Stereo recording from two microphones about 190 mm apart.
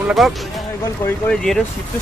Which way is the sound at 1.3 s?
5° left (ahead or behind).